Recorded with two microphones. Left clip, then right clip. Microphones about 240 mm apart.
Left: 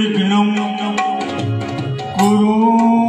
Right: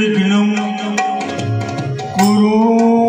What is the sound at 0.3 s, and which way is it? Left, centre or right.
Music, right.